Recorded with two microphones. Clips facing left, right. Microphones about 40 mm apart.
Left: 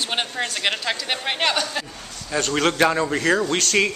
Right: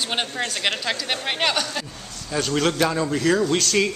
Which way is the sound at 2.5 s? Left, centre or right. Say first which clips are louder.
Left 2 dB; left.